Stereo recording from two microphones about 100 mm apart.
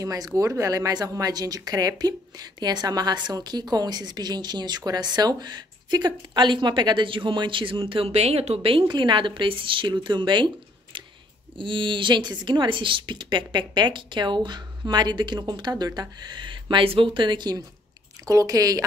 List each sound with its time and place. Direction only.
0.0 s speech: 35° right (ahead or behind)
18.2 s speech: 35° right (ahead or behind)